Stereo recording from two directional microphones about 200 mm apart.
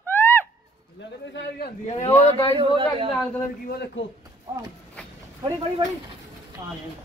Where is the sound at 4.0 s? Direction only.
70° left (ahead or behind).